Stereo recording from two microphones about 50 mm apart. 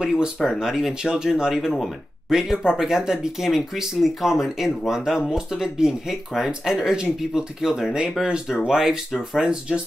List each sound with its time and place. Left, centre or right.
0.0 s speech: centre
9.4 s speech: centre